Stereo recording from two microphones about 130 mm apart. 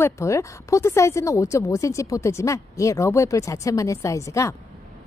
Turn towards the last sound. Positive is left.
turn(degrees=25)  # may be behind; listen again after turning